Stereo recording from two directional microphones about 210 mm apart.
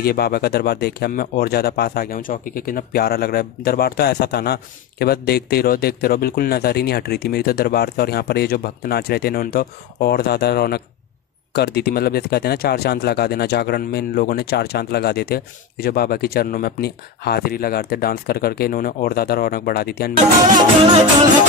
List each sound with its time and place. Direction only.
0.0 s speech: 45° left (ahead or behind)